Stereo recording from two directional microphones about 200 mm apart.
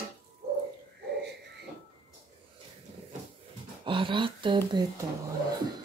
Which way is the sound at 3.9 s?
25° right (ahead or behind).